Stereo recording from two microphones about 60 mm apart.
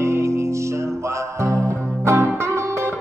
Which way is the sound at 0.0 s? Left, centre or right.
Right.